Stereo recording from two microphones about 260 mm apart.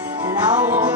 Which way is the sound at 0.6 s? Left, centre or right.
Centre.